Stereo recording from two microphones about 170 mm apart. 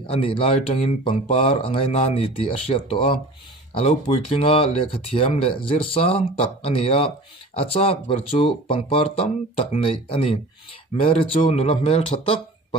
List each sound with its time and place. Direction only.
0.0 s speech: 35° left (ahead or behind)